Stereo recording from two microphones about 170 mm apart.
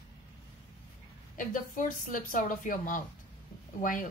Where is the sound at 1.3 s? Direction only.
55° left (ahead or behind).